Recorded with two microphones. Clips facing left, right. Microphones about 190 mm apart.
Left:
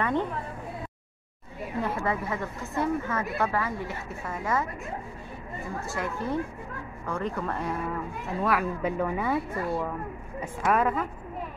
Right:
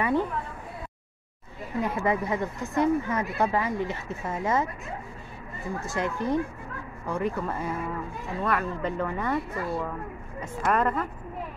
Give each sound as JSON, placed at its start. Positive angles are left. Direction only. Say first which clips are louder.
{"t": 1.8, "sound": "speech", "louder": "right 3 dB", "side_deg": -15}
{"t": 5.9, "sound": "speech", "louder": "right 4 dB", "side_deg": -20}